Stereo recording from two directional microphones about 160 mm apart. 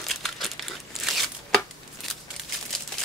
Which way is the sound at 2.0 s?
Centre (ahead or behind).